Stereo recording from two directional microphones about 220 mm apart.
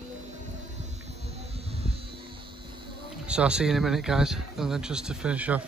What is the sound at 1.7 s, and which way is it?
Vehicle, 25° right (ahead or behind).